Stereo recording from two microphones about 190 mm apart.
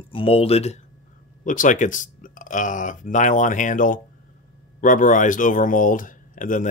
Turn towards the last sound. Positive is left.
turn(degrees=45)  # may be behind; listen again after turning